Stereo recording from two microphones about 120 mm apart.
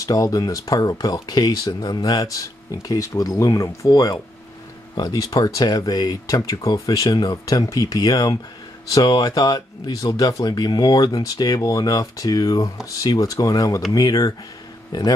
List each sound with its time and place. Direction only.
0.0 s speech: 30° left (ahead or behind)